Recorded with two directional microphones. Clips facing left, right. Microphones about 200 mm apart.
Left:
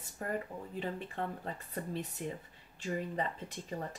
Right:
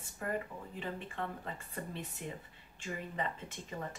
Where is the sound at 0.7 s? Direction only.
40° left (ahead or behind).